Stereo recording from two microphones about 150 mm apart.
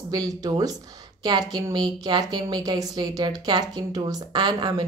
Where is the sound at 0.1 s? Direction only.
25° right (ahead or behind).